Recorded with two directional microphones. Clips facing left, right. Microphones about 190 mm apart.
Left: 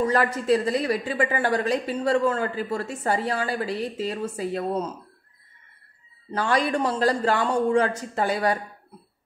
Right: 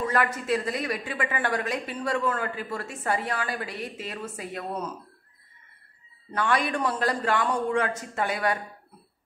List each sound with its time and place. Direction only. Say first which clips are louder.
0.0 s a woman's voice: left 4 dB; 30° left (ahead or behind)
6.3 s a woman's voice: left 3 dB; 30° left (ahead or behind)